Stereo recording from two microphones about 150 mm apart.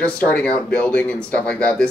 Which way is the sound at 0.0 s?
10° left (ahead or behind).